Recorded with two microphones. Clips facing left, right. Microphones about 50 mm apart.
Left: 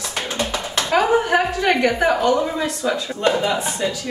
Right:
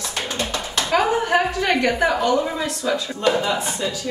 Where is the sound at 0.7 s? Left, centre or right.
Centre.